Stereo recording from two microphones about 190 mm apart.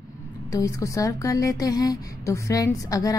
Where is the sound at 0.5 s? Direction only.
15° left (ahead or behind).